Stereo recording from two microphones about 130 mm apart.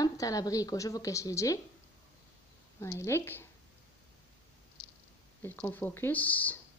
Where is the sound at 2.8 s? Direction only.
20° left (ahead or behind).